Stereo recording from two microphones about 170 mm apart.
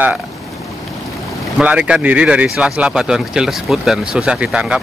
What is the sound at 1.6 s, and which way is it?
Speech, 5° right (ahead or behind).